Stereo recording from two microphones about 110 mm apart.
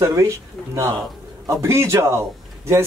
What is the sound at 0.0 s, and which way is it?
Speech, 25° right (ahead or behind).